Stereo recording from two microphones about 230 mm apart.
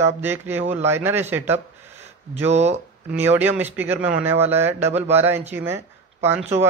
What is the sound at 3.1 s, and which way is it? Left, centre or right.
Speech, centre.